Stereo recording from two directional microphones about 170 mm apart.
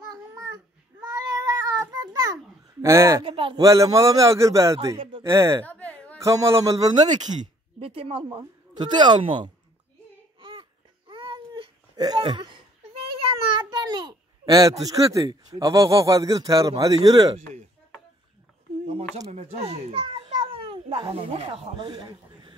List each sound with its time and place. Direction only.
0.1 s babbling: 20° right (ahead or behind)
1.0 s a sound: 25° right (ahead or behind)
2.8 s speech: 15° right (ahead or behind)
3.3 s speech: 30° right (ahead or behind)
3.6 s a man's voice: 20° right (ahead or behind)
4.9 s speech: 30° right (ahead or behind)
5.2 s speech: 15° right (ahead or behind)
5.7 s a sound: 10° left (ahead or behind)
6.1 s a man's voice: 20° right (ahead or behind)
7.8 s a man's voice: 35° right (ahead or behind)
10.4 s babbling: 30° right (ahead or behind)
13.6 s a child's voice: 25° right (ahead or behind)
18.9 s a child's voice: 40° right (ahead or behind); by 22.6 s 25° right (ahead or behind)